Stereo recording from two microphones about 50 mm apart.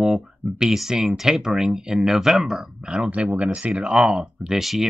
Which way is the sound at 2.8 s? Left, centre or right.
Centre.